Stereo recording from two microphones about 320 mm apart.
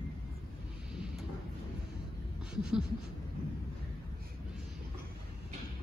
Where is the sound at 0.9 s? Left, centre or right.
Centre.